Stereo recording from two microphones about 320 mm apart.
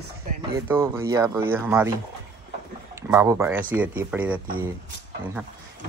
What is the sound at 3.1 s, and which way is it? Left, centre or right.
Speech, centre.